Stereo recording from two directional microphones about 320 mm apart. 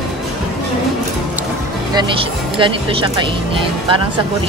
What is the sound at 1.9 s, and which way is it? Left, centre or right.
Speech, centre.